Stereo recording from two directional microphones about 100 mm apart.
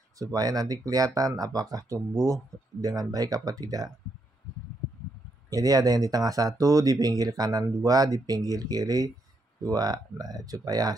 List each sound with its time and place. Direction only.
0.2 s speech: 40° right (ahead or behind)
5.5 s speech: 40° right (ahead or behind)